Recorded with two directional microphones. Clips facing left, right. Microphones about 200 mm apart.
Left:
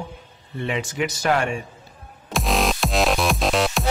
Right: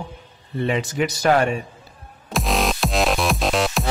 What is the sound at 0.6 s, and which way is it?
Speech, 35° right (ahead or behind).